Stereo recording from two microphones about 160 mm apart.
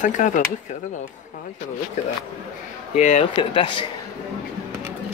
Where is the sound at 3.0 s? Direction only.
45° left (ahead or behind).